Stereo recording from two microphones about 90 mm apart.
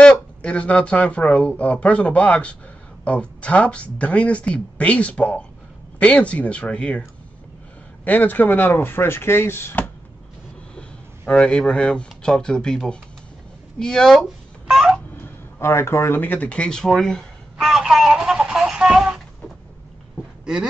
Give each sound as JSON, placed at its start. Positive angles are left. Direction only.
{"t": 0.0, "sound": "speech", "side_deg": 10}
{"t": 10.8, "sound": "speech", "side_deg": 10}
{"t": 14.7, "sound": "a sound", "side_deg": -5}
{"t": 15.6, "sound": "speech", "side_deg": 30}